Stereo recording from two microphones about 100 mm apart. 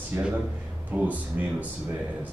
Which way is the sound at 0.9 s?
15° right (ahead or behind).